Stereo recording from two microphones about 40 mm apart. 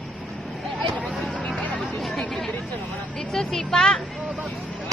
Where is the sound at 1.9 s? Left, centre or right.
Centre.